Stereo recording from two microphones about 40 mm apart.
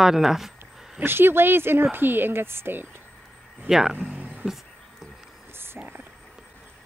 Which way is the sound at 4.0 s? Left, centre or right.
Right.